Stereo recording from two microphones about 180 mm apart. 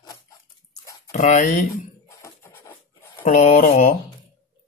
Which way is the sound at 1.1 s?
45° left (ahead or behind).